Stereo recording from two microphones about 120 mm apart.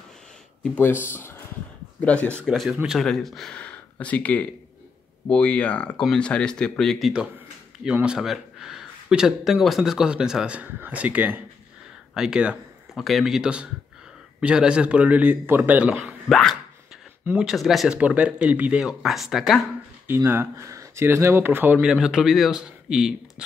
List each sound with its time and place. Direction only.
0.7 s speech: 15° left (ahead or behind)
2.4 s a man's voice: centre (ahead or behind)
7.1 s a man's voice: 5° right (ahead or behind)
16.3 s a man's voice: 5° left (ahead or behind)
20.2 s speech: 20° right (ahead or behind)
21.7 s a man's voice: 5° right (ahead or behind)